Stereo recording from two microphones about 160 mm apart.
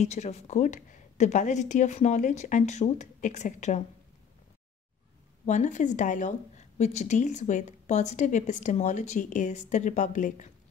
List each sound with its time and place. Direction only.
0.0 s a woman's voice: 45° left (ahead or behind)
5.4 s a woman's voice: 50° left (ahead or behind)